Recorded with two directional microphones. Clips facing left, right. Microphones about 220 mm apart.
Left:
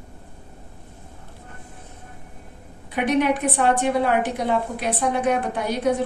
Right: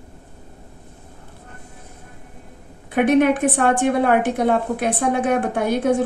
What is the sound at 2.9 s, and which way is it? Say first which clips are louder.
A woman's voice: right 5 dB; 50° right (ahead or behind).